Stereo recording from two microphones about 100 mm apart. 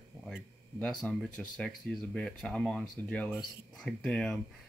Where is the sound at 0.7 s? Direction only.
15° left (ahead or behind).